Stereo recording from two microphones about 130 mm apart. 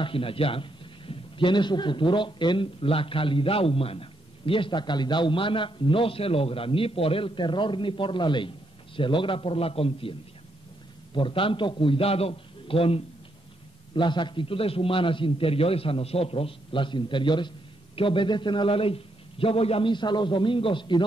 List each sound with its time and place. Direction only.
0.0 s a man's voice: 45° left (ahead or behind)
11.1 s a man's voice: 40° left (ahead or behind)